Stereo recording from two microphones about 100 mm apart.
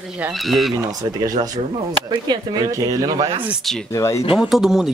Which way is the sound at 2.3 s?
45° right (ahead or behind).